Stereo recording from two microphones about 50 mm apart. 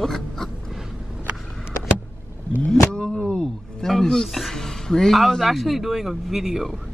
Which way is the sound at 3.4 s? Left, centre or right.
Centre.